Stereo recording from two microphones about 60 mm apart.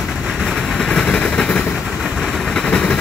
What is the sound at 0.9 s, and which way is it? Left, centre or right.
Train, centre.